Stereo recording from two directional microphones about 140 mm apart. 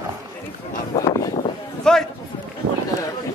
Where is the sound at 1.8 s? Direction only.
5° left (ahead or behind).